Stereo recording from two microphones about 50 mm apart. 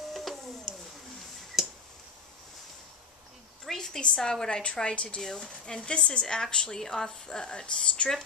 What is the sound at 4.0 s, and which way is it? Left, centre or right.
A woman's voice, centre.